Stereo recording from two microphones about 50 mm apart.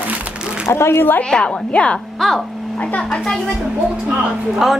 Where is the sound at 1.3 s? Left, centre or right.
Left.